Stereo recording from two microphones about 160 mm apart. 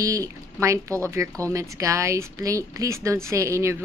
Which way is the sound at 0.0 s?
20° right (ahead or behind).